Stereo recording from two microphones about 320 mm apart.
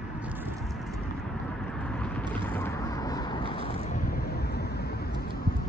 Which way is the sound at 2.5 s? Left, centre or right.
Centre.